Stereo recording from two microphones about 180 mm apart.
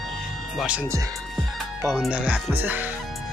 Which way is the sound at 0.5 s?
5° right (ahead or behind).